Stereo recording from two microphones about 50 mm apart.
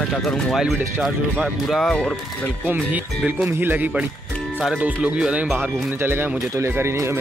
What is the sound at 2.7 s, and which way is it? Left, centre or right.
Speech, right.